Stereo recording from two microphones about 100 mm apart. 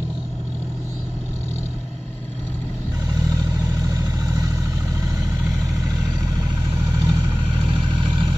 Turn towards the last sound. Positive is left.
turn(degrees=-35)  # may be behind; listen again after turning